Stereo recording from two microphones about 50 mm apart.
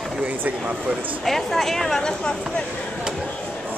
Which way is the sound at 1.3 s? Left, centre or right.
Centre.